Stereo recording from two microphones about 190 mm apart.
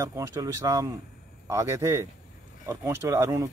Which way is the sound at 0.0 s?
15° right (ahead or behind).